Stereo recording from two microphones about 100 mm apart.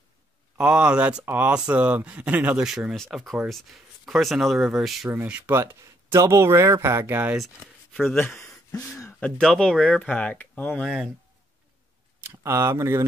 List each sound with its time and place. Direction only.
0.6 s speech: 10° right (ahead or behind)
5.1 s speech: 20° right (ahead or behind)
7.3 s speech: centre (ahead or behind)
8.2 s speech: 25° left (ahead or behind)
9.2 s speech: 5° left (ahead or behind)
10.7 s speech: 5° right (ahead or behind)
12.2 s speech: 25° right (ahead or behind)